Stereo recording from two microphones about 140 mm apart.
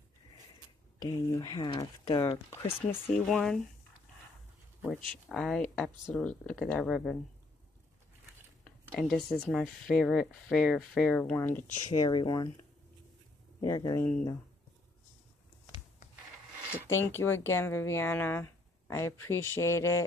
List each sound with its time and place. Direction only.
1.0 s speech: 30° left (ahead or behind)
3.1 s speech: 5° left (ahead or behind)
5.0 s speech: 5° left (ahead or behind)
8.6 s speech: 5° left (ahead or behind)
12.0 s speech: 30° left (ahead or behind)
13.6 s speech: 30° left (ahead or behind)
16.7 s speech: 15° left (ahead or behind)